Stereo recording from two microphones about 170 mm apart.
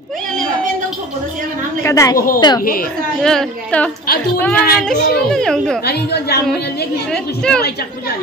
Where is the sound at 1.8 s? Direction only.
15° left (ahead or behind).